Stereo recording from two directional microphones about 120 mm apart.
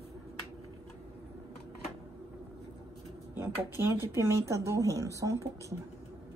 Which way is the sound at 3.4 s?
20° right (ahead or behind).